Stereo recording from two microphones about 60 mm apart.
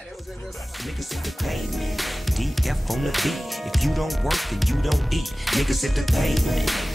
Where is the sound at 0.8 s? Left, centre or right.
Centre.